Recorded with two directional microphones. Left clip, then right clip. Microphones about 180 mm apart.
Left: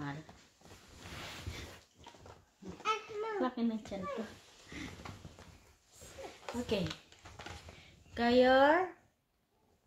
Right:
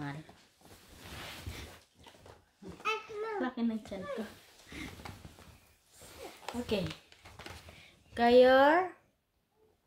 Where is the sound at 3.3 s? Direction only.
25° right (ahead or behind).